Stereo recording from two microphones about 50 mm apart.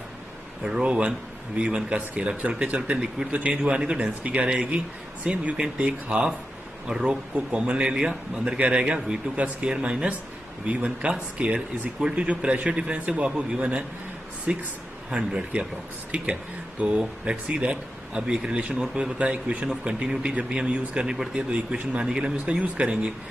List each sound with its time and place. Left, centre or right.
0.7 s speech: centre
6.9 s speech: centre
7.3 s speech: right
17.0 s speech: right